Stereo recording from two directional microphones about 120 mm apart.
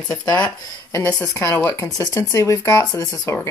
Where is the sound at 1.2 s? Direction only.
20° left (ahead or behind).